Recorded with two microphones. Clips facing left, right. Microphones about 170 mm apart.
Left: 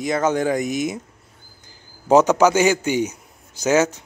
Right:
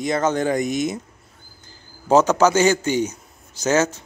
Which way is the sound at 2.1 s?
15° left (ahead or behind).